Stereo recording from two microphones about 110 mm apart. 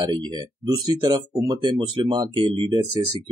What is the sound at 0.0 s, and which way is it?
Speech, 45° right (ahead or behind).